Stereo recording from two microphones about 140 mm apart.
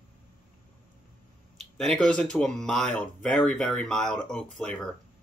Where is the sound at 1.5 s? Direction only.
5° left (ahead or behind).